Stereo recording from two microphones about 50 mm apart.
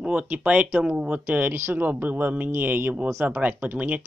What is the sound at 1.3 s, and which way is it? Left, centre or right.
Speech, right.